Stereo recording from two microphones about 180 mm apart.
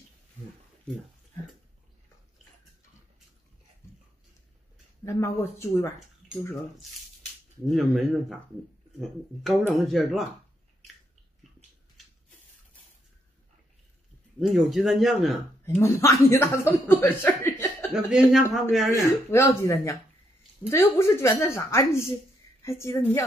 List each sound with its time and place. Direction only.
5.0 s speech: 15° left (ahead or behind)
7.6 s speech: centre (ahead or behind)
9.4 s speech: centre (ahead or behind)
14.4 s speech: centre (ahead or behind)
15.8 s speech: 15° left (ahead or behind)
17.9 s speech: centre (ahead or behind)
19.3 s speech: 15° left (ahead or behind)